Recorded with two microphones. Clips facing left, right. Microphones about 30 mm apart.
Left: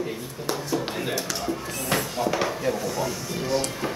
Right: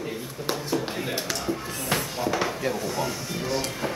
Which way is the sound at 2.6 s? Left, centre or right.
Centre.